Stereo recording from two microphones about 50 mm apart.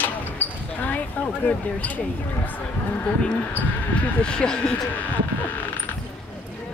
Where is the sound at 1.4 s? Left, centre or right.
Left.